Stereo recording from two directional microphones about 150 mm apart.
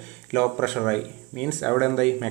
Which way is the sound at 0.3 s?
Centre (ahead or behind).